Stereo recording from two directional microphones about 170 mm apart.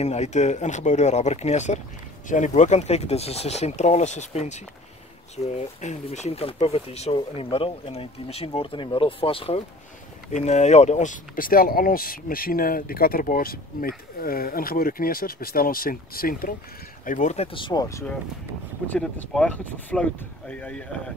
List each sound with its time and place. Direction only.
0.0 s speech: 40° left (ahead or behind); by 16.5 s 60° left (ahead or behind)
17.0 s speech: 50° left (ahead or behind); by 18.1 s 20° left (ahead or behind)
18.9 s speech: 5° left (ahead or behind)